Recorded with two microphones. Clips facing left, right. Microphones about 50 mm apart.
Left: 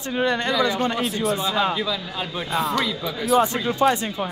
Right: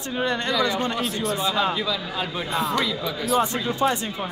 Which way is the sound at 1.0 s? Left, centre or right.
Centre.